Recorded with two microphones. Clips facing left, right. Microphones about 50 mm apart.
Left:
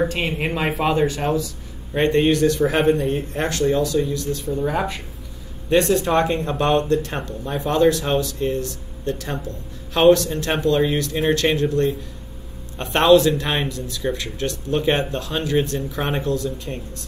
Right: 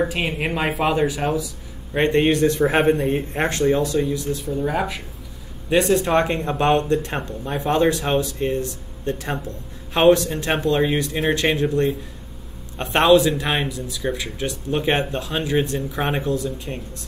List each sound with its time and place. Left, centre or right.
0.0 s speech: centre
2.0 s speech: right
4.4 s speech: centre
6.1 s speech: right